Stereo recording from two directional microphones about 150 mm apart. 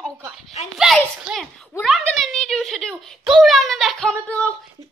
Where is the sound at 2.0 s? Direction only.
Centre (ahead or behind).